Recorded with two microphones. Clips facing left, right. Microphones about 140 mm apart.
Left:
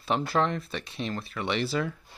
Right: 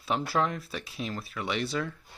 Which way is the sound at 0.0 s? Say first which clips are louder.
Left 2 dB; centre (ahead or behind).